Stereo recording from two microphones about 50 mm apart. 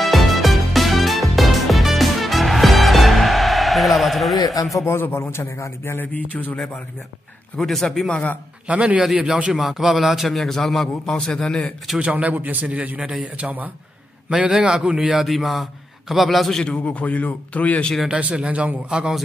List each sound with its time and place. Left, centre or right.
0.0 s music: centre
4.9 s a man's voice: left
6.1 s a sound: left
7.5 s a man's voice: centre
8.1 s speech: left
8.6 s a man's voice: right
9.5 s a man's voice: centre
12.0 s a man's voice: right
14.6 s speech: centre
15.1 s a man's voice: centre
16.6 s speech: left
18.3 s a man's voice: right
18.9 s speech: centre